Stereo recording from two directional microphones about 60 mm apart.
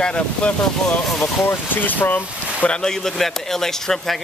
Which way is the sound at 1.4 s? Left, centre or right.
Left.